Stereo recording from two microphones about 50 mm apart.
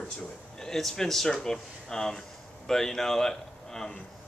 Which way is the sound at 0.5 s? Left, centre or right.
Centre.